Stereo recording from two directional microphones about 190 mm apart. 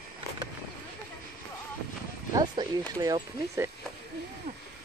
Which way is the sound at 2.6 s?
20° right (ahead or behind).